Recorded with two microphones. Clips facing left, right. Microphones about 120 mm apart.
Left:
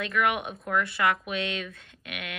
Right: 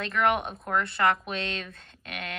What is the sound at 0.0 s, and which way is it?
Speech, 30° right (ahead or behind).